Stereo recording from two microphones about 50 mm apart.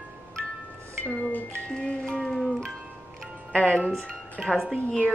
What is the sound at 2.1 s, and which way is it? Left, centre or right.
Music, centre.